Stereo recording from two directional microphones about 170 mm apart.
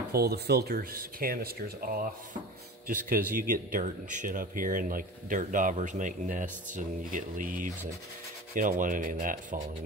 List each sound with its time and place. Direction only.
0.1 s speech: 65° right (ahead or behind)